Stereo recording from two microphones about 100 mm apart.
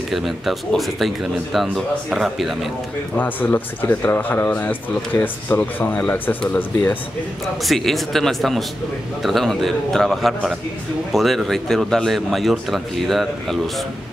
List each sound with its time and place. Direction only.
0.1 s a man's voice: centre (ahead or behind)
3.2 s speech: 20° left (ahead or behind)
7.6 s a man's voice: centre (ahead or behind)